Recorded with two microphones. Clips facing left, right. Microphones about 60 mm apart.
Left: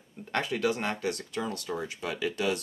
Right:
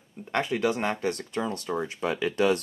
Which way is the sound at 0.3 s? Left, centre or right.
Right.